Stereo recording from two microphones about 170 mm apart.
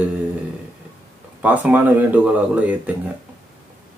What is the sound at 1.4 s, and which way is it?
Speech, 10° right (ahead or behind).